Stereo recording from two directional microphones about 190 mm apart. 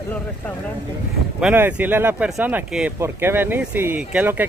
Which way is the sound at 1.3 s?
5° right (ahead or behind).